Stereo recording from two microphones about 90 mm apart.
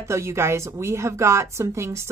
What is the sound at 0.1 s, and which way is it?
A woman's voice, 30° right (ahead or behind).